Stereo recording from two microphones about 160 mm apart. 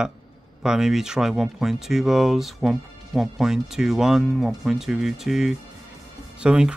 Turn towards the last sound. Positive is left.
turn(degrees=-5)  # may be behind; listen again after turning